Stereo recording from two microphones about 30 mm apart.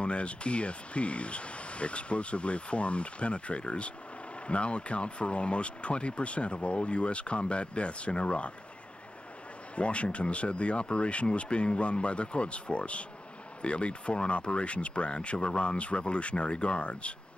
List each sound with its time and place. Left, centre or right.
0.0 s speech: left
9.8 s speech: left